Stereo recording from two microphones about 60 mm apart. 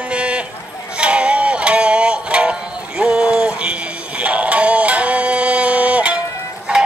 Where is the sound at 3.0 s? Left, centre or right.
Centre.